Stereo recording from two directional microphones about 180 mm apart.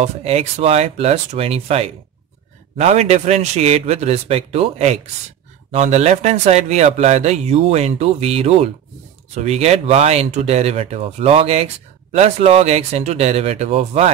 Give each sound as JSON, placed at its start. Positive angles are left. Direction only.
{"t": 0.0, "sound": "speech", "side_deg": -35}